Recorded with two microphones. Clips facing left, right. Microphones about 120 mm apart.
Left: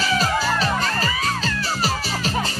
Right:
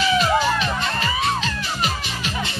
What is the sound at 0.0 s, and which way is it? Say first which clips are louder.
Music: right 3 dB; 40° left (ahead or behind).